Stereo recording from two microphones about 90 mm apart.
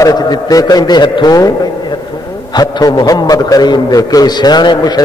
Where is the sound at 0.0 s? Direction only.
45° left (ahead or behind).